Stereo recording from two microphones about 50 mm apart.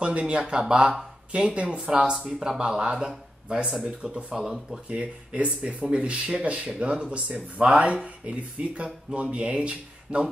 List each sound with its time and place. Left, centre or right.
0.0 s speech: right
4.8 s speech: right